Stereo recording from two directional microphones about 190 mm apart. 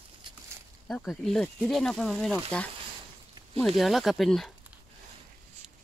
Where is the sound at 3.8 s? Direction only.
Centre (ahead or behind).